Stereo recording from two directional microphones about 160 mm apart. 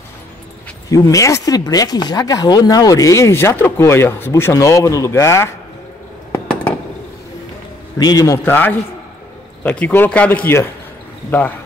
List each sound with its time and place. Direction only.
0.8 s speech: 20° left (ahead or behind)
6.3 s a sound: 10° left (ahead or behind)
8.0 s a man's voice: 25° left (ahead or behind)